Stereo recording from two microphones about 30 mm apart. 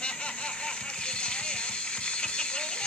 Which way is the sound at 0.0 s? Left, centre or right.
Left.